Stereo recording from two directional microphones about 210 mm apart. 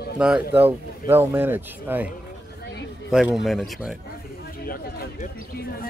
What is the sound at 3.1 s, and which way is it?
Speech, centre (ahead or behind).